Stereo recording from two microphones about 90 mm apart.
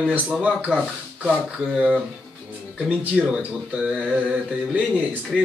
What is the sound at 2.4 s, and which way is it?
Speech, 15° right (ahead or behind).